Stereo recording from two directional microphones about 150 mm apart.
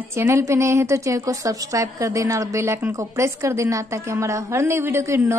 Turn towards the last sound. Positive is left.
turn(degrees=-15)  # may be behind; listen again after turning